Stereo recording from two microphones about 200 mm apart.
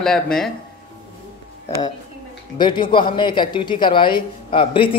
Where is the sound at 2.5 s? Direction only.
20° left (ahead or behind).